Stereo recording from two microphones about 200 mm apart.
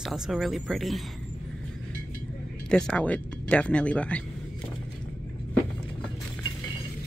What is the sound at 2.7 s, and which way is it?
Speech, 5° left (ahead or behind).